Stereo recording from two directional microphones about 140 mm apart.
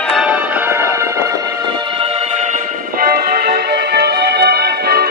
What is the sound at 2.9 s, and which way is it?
Music, 90° right.